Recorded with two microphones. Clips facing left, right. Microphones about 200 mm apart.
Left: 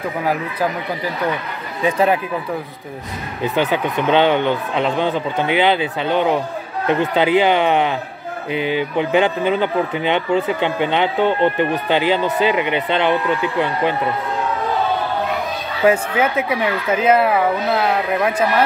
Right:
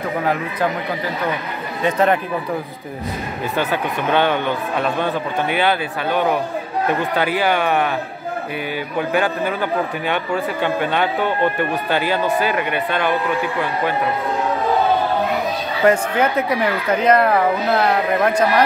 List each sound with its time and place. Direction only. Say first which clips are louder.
1.9 s speech: even; 10° left (ahead or behind)
3.4 s speech: left 3 dB; 20° left (ahead or behind)
15.8 s speech: even; 5° left (ahead or behind)